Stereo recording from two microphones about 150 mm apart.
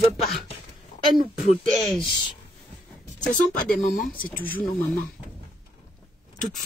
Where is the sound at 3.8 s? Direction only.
60° left (ahead or behind).